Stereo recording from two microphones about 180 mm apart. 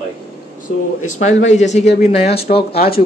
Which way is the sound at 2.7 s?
55° left (ahead or behind).